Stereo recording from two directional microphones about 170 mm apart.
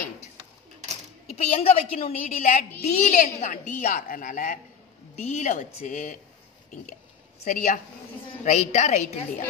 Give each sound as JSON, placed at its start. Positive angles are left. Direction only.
{"t": 1.2, "sound": "a woman's voice", "side_deg": 40}
{"t": 7.4, "sound": "speech", "side_deg": 55}
{"t": 8.5, "sound": "a woman's voice", "side_deg": 40}